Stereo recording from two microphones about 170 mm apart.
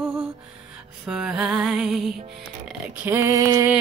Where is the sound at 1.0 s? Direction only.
5° right (ahead or behind).